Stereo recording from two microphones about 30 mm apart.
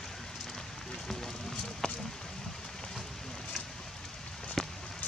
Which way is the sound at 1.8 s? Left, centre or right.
Left.